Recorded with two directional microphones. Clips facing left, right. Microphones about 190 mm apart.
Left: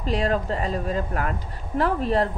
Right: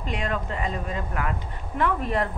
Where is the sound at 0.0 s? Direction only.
35° left (ahead or behind).